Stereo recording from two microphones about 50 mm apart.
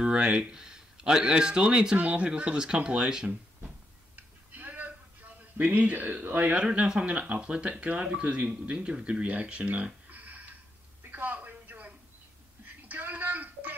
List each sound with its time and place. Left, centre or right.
0.0 s speech: right
2.0 s speech: right
2.2 s speech: centre
4.5 s a sound: right
5.6 s speech: right
6.6 s speech: right
11.1 s a sound: right